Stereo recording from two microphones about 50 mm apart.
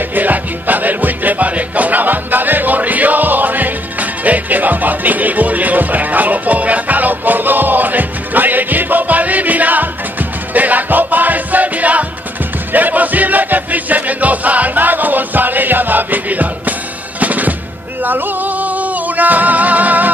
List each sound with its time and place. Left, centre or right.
0.1 s music: right
17.2 s drum: right
18.0 s music: right